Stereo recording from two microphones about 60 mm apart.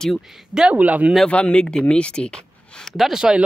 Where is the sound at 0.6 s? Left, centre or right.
Right.